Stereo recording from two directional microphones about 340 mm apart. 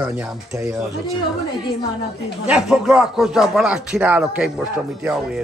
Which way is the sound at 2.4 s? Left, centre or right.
Centre.